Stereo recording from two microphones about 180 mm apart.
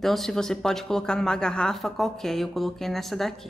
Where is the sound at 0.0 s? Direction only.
Centre (ahead or behind).